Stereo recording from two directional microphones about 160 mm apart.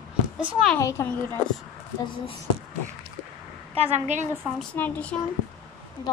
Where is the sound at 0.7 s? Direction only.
20° left (ahead or behind).